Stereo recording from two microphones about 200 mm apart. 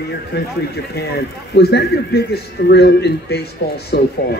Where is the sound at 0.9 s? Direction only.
55° left (ahead or behind).